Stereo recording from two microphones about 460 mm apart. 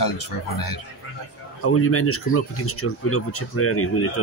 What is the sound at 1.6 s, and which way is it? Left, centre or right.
Speech, left.